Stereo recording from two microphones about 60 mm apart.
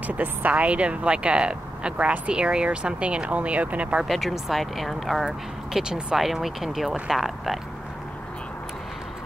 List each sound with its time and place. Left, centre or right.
0.0 s speech: right
4.0 s speech: centre
6.1 s speech: centre